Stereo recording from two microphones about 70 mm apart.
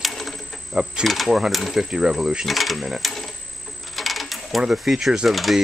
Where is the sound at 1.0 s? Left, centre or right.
Centre.